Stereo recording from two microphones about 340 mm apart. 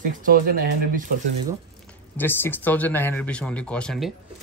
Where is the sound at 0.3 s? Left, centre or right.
Right.